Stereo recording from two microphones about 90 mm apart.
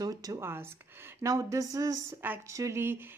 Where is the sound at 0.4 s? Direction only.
25° right (ahead or behind).